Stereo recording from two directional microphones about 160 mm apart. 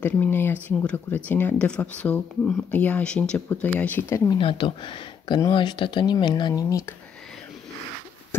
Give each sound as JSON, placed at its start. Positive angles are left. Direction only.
{"t": 0.0, "sound": "speech", "side_deg": 10}
{"t": 4.3, "sound": "speech", "side_deg": 30}